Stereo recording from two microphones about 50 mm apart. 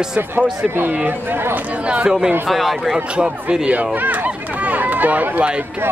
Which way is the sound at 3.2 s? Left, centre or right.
Centre.